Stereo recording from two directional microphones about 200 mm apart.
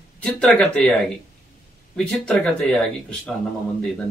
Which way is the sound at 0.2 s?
5° left (ahead or behind).